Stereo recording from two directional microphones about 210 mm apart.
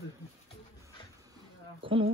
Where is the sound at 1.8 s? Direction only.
25° right (ahead or behind).